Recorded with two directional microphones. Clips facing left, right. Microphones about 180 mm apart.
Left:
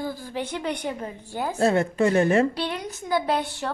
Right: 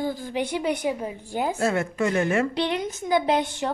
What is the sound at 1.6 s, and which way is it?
Speech, 30° left (ahead or behind).